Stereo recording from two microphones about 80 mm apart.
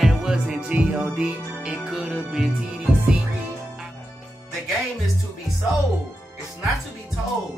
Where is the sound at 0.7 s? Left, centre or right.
Centre.